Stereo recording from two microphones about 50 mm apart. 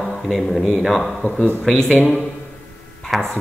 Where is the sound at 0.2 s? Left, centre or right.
Centre.